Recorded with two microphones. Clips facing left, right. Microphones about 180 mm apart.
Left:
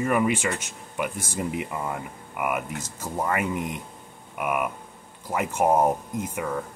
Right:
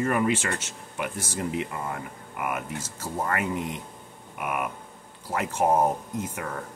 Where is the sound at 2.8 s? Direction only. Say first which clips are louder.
Left 1 dB; 15° left (ahead or behind).